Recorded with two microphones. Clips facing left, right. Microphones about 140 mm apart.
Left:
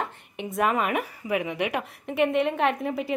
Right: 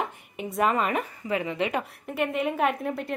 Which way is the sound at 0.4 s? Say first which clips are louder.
Even; centre (ahead or behind).